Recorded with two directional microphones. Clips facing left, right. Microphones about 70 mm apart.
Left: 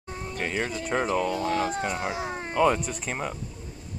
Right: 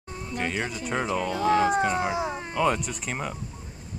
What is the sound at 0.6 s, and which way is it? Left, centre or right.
Speech, centre.